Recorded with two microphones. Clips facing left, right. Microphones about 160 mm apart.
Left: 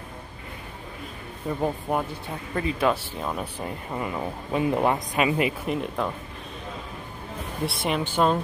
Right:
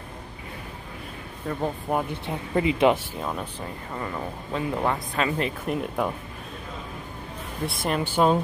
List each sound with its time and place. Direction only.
1.5 s speech: 5° left (ahead or behind)
2.2 s speech: 20° right (ahead or behind)
3.2 s speech: centre (ahead or behind)
3.5 s speech: 10° left (ahead or behind)
5.7 s speech: centre (ahead or behind)
7.6 s speech: centre (ahead or behind)
8.0 s speech: 10° right (ahead or behind)